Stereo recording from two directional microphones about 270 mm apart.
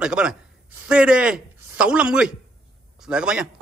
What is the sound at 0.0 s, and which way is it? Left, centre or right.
Speech, centre.